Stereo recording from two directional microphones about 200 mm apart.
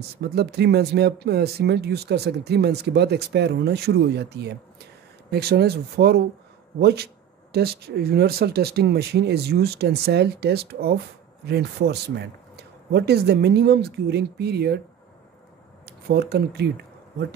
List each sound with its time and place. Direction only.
0.2 s speech: 55° right (ahead or behind)
15.8 s speech: 55° right (ahead or behind)